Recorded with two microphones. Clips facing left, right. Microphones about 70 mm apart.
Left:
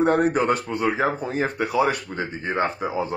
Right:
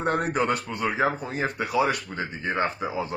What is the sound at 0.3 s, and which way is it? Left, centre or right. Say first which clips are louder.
A man's voice: left 3 dB; left.